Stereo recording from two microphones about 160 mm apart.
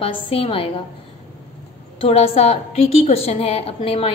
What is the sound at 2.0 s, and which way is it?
A woman's voice, 40° left (ahead or behind).